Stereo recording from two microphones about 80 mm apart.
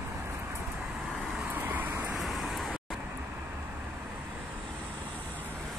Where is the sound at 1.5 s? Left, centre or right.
Right.